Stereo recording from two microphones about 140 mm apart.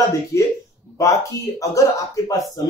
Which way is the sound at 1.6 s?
25° left (ahead or behind).